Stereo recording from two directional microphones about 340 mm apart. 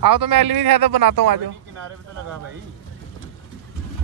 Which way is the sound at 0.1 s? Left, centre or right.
Right.